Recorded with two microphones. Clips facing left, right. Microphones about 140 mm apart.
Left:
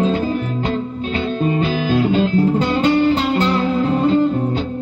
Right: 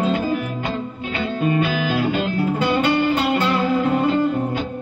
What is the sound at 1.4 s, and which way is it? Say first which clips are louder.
Music: even; 30° left (ahead or behind).